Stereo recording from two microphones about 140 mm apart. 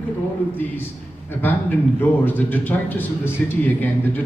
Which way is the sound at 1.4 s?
15° left (ahead or behind).